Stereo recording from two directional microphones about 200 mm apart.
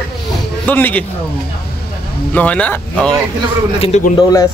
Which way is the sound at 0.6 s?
10° left (ahead or behind).